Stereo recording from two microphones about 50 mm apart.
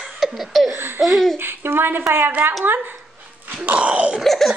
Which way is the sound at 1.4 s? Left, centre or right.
Right.